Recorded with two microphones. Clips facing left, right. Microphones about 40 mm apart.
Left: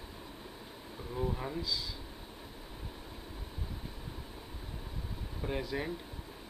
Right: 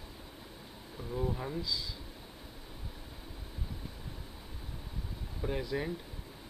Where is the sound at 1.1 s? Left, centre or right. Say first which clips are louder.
Right 1 dB; centre.